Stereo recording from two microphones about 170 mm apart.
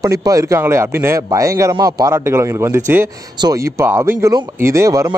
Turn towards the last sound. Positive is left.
turn(degrees=-20)  # may be behind; listen again after turning